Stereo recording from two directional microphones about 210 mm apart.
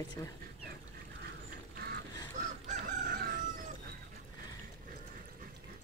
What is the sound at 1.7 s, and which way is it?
Duck, 50° right (ahead or behind).